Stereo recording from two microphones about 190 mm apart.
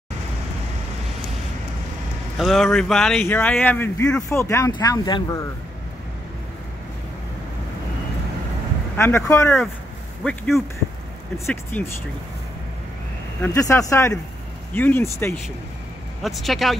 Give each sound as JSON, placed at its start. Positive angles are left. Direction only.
{"t": 2.3, "sound": "speech", "side_deg": 0}
{"t": 8.9, "sound": "speech", "side_deg": 15}
{"t": 10.2, "sound": "speech", "side_deg": 5}
{"t": 13.4, "sound": "speech", "side_deg": 15}
{"t": 16.2, "sound": "speech", "side_deg": 0}